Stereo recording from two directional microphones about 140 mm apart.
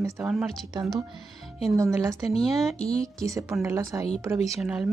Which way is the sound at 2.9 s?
25° right (ahead or behind).